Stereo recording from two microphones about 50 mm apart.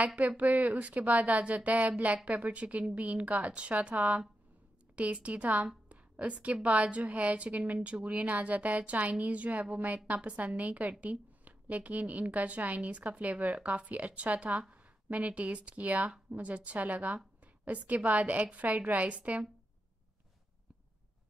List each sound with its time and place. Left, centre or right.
0.0 s a woman's voice: right